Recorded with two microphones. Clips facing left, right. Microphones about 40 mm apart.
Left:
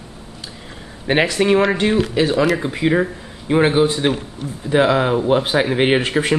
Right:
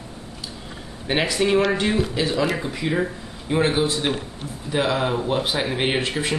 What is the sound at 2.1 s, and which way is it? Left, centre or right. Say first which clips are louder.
Speech: left 6 dB; left.